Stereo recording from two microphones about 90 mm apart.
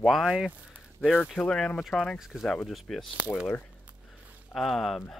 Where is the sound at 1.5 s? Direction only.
10° left (ahead or behind).